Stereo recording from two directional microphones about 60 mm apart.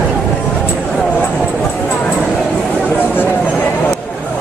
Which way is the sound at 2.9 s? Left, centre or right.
Left.